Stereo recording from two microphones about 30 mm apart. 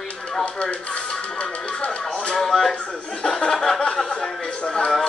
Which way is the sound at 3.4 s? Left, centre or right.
Left.